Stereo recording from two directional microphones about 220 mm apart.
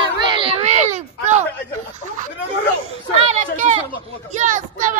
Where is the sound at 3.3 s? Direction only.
30° right (ahead or behind).